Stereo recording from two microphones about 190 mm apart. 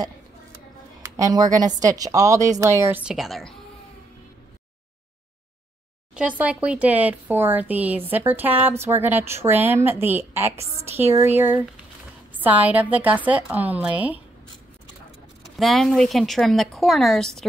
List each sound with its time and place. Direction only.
1.1 s speech: 20° right (ahead or behind); by 3.5 s centre (ahead or behind)
6.1 s speech: 5° right (ahead or behind)
15.5 s speech: centre (ahead or behind)